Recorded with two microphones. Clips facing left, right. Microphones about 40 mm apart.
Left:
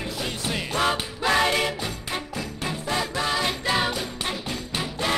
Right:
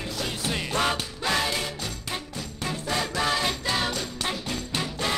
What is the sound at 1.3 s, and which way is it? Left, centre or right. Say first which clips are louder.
Music: left 6 dB; left.